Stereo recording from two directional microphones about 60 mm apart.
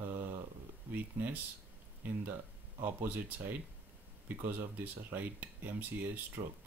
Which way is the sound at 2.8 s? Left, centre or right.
Right.